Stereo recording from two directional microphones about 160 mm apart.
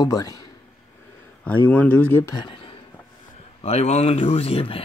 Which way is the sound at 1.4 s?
10° left (ahead or behind).